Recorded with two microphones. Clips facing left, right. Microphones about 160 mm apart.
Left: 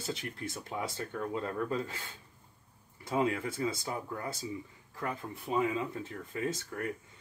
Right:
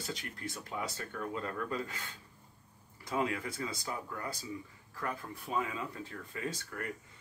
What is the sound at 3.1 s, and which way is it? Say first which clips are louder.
Speech: left 3 dB; 25° left (ahead or behind).